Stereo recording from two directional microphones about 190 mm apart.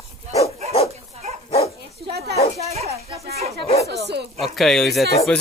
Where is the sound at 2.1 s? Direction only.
60° right (ahead or behind).